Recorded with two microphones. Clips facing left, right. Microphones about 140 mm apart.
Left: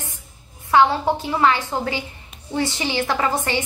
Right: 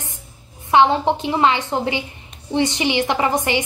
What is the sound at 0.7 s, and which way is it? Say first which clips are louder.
A woman's voice: right 2 dB; 20° right (ahead or behind).